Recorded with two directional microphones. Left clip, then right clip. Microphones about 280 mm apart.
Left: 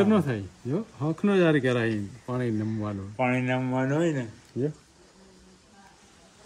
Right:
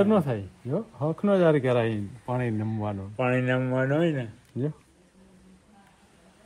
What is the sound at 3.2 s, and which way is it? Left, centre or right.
Speech, right.